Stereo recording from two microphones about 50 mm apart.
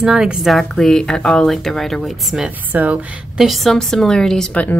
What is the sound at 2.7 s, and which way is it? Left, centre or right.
Speech, right.